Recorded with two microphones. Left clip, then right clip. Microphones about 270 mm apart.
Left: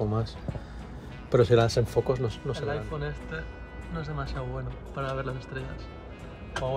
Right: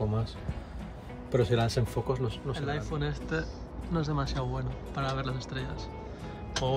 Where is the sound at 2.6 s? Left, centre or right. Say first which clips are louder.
Even; centre.